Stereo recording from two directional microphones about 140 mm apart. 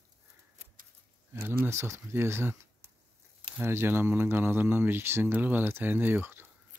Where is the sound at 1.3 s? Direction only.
15° right (ahead or behind).